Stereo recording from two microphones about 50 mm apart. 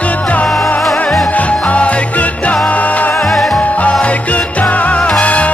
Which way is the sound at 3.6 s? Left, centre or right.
Left.